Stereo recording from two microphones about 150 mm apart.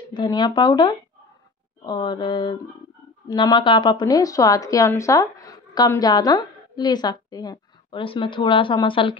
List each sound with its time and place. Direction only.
0.1 s speech: 30° left (ahead or behind)